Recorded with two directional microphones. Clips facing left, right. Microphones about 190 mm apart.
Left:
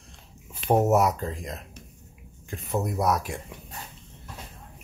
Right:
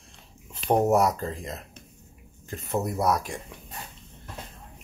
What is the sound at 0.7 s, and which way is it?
Speech, 5° left (ahead or behind).